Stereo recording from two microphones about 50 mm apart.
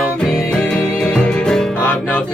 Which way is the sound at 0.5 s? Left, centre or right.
Left.